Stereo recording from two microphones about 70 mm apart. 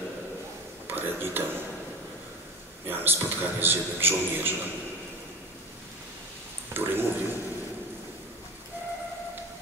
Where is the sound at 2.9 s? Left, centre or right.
Right.